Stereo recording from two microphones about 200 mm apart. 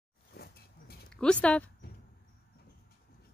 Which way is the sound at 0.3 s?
50° left (ahead or behind).